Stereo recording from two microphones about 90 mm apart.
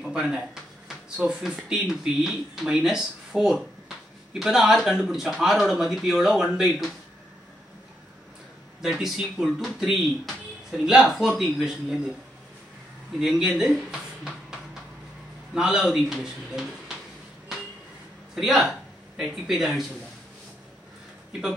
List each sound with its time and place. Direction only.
0.0 s speech: 10° right (ahead or behind)
8.8 s speech: 5° right (ahead or behind)
13.2 s music: 5° right (ahead or behind)
15.5 s speech: 10° right (ahead or behind)
18.3 s speech: centre (ahead or behind)
21.3 s speech: 10° right (ahead or behind)